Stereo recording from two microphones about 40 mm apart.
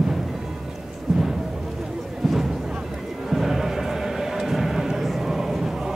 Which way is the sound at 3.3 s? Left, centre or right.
Centre.